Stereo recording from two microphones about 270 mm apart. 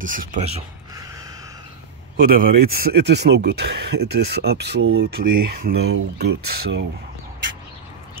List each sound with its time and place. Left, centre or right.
0.0 s speech: right
2.1 s speech: right